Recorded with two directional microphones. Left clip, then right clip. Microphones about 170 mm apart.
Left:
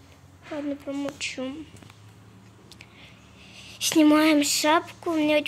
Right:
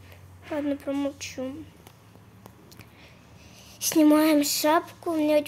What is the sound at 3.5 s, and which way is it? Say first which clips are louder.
Speech: left 2 dB; centre (ahead or behind).